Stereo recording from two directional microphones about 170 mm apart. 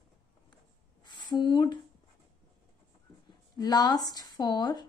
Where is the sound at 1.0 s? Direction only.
25° left (ahead or behind).